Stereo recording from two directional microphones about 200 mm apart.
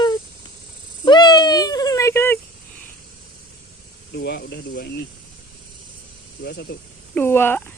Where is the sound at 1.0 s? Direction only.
20° left (ahead or behind).